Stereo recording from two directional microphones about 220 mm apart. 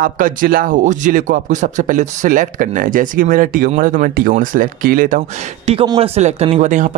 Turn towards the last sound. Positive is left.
turn(degrees=-35)  # may be behind; listen again after turning